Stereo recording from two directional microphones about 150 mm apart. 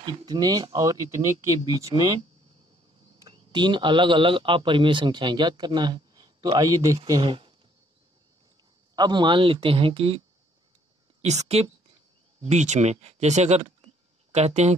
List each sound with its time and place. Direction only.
0.0 s speech: 25° right (ahead or behind)
3.2 s speech: 30° right (ahead or behind)
8.9 s speech: 30° right (ahead or behind)
11.2 s speech: 45° right (ahead or behind)